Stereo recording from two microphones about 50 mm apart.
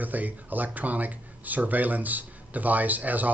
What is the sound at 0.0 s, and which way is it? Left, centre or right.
Speech, right.